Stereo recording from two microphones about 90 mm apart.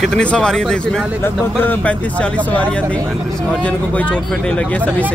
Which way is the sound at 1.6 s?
20° left (ahead or behind).